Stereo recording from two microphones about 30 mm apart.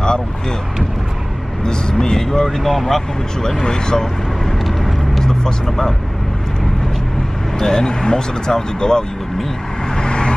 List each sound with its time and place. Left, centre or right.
1.6 s speech: left
2.6 s speech: centre
3.6 s speech: left
5.2 s speech: centre
7.5 s speech: centre
9.9 s vehicle: left